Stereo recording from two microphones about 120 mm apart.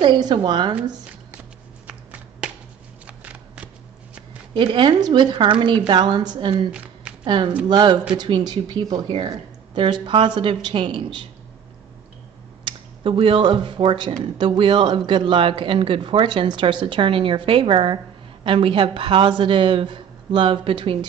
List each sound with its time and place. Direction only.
0.0 s speech: 40° right (ahead or behind)
3.1 s shuffling cards: 10° right (ahead or behind)
4.6 s speech: 40° right (ahead or behind)
6.7 s a sound: 10° right (ahead or behind)
7.2 s speech: 40° right (ahead or behind)
12.6 s speech: 45° right (ahead or behind)